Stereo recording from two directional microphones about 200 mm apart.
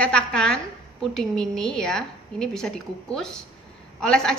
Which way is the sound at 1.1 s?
Centre (ahead or behind).